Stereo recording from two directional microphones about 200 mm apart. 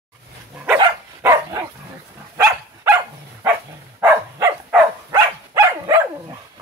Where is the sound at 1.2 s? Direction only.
15° right (ahead or behind).